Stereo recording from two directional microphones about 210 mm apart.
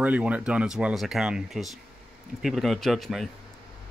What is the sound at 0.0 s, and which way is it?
Speech, 5° right (ahead or behind).